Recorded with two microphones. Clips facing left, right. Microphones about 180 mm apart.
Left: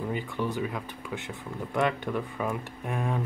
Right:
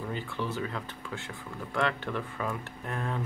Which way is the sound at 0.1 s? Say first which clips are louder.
Left 3 dB; 15° left (ahead or behind).